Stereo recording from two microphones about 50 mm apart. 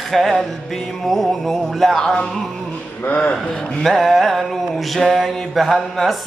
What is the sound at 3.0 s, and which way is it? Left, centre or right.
Speech, left.